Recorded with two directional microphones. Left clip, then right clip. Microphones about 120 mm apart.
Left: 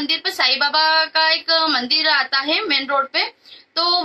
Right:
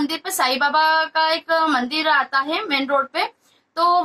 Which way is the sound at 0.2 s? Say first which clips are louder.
Even; 40° left (ahead or behind).